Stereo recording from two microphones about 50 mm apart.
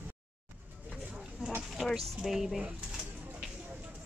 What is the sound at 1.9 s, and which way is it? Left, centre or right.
Speech, centre.